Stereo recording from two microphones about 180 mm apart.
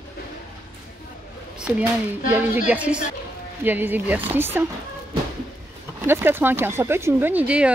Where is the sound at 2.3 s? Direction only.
10° right (ahead or behind).